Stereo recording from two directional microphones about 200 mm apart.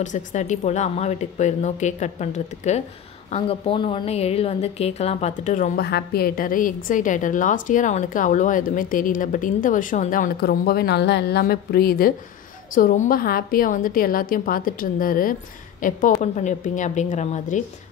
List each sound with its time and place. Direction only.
0.0 s a woman's voice: 40° left (ahead or behind)